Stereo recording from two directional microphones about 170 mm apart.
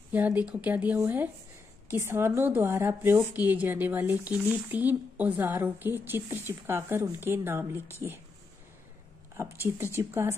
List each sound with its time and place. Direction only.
0.1 s a woman's voice: 10° right (ahead or behind)
9.4 s a woman's voice: 15° right (ahead or behind)